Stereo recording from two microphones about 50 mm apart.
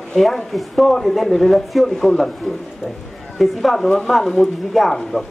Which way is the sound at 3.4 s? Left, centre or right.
Centre.